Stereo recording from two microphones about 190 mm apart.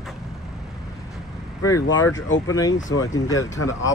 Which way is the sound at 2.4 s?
20° left (ahead or behind).